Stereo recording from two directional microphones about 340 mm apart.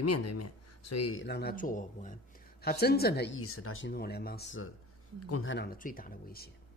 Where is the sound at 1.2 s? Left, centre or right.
Left.